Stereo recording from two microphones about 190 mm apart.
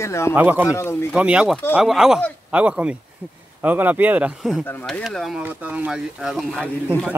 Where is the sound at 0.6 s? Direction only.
15° left (ahead or behind).